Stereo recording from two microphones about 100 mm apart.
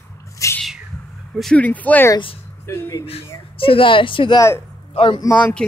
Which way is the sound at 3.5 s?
65° left (ahead or behind).